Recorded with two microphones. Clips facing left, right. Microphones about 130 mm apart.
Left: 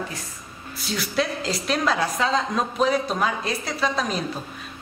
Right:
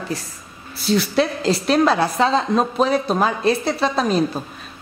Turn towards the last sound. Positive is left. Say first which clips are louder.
# right 6 dB
turn(degrees=-30)  # may be behind; listen again after turning